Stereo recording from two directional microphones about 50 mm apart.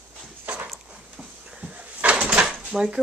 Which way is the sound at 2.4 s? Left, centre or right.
Centre.